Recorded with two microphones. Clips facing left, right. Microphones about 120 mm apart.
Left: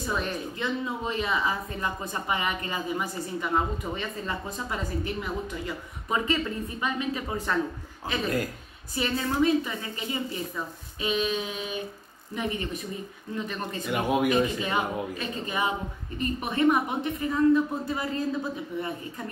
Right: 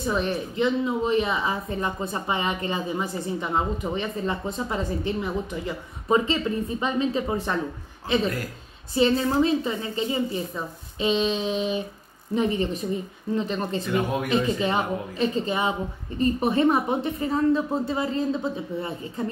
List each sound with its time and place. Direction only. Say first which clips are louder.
0.0 s a woman's voice: right 5 dB; 25° right (ahead or behind)
13.9 s speech: left 2 dB; 15° left (ahead or behind)
14.3 s a woman's voice: right 2 dB; 30° right (ahead or behind)